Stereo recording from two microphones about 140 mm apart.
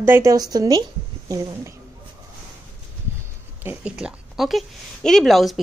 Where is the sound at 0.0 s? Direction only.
20° right (ahead or behind).